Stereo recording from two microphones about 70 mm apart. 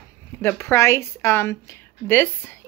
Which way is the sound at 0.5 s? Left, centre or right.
Left.